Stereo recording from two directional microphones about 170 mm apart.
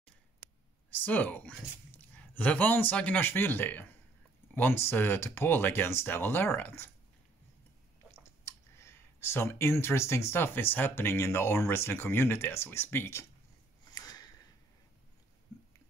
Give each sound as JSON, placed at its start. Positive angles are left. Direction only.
{"t": 0.9, "sound": "speech", "side_deg": 10}
{"t": 8.5, "sound": "speech", "side_deg": 15}
{"t": 13.8, "sound": "a sound", "side_deg": 20}